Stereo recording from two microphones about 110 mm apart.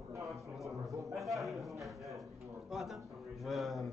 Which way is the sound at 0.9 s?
30° right (ahead or behind).